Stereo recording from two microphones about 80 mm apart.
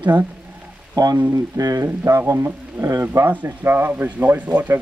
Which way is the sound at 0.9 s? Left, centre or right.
Right.